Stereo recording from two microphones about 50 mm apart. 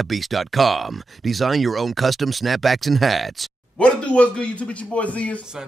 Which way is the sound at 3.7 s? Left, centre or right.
Left.